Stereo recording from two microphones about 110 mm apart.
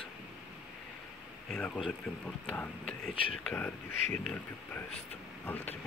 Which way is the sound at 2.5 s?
15° left (ahead or behind).